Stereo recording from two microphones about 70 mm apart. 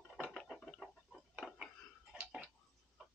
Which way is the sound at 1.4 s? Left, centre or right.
Centre.